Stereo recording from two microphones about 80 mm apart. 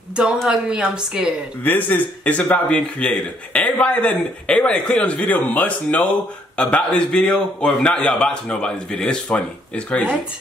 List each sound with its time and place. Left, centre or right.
0.5 s a woman's voice: centre
1.6 s a man's voice: left